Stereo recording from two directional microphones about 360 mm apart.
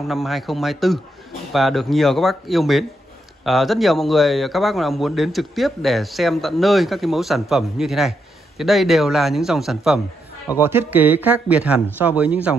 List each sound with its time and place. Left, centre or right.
0.1 s a man's voice: centre